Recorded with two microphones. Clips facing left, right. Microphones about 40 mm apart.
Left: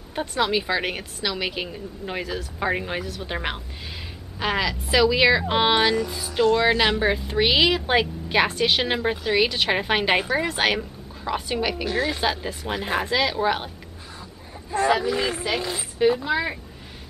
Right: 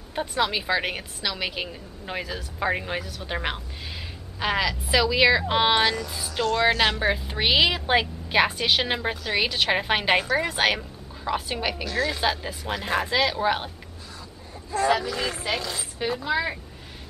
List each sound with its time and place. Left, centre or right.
0.1 s a woman's voice: centre
11.8 s speech: centre
12.1 s a woman's voice: centre
14.7 s a woman's voice: centre